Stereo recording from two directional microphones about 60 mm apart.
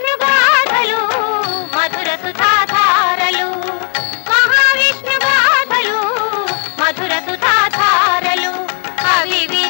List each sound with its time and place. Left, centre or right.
0.0 s music of bollywood: left
9.0 s music: left